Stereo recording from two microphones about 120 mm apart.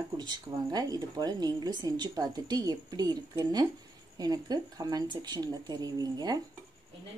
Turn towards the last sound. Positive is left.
turn(degrees=-35)  # may be behind; listen again after turning